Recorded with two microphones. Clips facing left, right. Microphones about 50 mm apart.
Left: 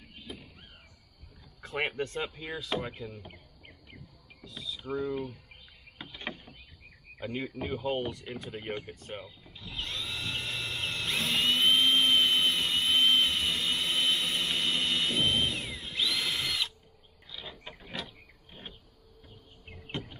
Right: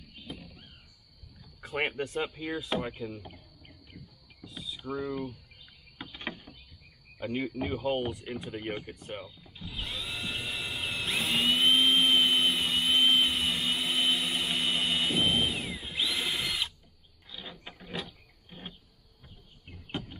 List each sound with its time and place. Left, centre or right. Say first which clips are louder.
0.3 s a sound: right 1 dB; centre
1.6 s speech: right 1 dB; centre
3.3 s insect: right 1 dB; left
4.5 s vehicle: left 1 dB; centre
5.9 s rowboat: right 1 dB; centre
7.2 s speech: right 3 dB; centre
9.6 s drill: even; centre
17.3 s a sound: even; centre
18.5 s vehicle: right 2 dB; centre